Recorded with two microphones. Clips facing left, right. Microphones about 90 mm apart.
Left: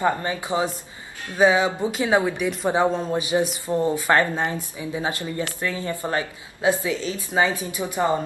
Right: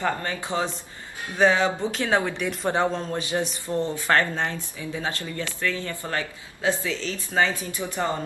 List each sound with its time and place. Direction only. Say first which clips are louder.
0.0 s speech: left 4 dB; 15° left (ahead or behind)